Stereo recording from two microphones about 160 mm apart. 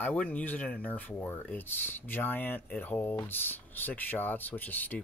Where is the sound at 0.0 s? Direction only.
10° left (ahead or behind).